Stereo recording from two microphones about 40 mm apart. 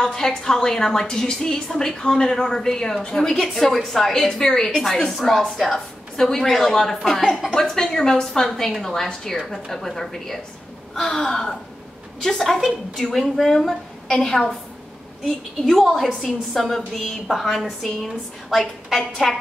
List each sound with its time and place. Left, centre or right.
0.0 s a woman's voice: centre
7.2 s a woman's voice: centre
7.5 s a woman's voice: centre
15.6 s a woman's voice: centre